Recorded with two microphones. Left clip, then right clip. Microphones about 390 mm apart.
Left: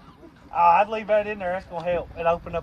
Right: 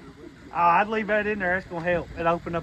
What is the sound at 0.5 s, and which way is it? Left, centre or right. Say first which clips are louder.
Speech: left 3 dB; left.